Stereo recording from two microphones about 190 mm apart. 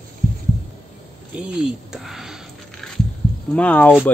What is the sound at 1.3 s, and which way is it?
Speech, 10° right (ahead or behind).